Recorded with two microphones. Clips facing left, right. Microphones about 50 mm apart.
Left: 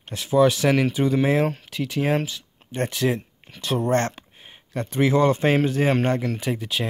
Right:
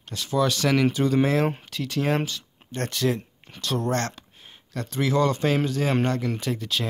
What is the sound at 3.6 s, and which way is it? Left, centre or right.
Speech, left.